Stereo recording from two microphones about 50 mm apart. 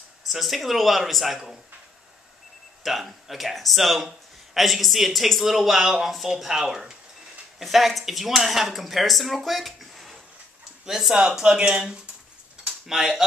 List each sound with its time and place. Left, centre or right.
0.3 s speech: centre
2.8 s speech: centre
12.8 s speech: centre